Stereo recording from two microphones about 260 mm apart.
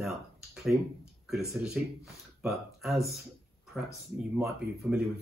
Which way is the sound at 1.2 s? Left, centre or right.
Centre.